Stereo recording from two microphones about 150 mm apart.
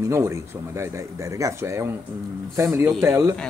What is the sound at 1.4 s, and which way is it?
Speech, 20° right (ahead or behind).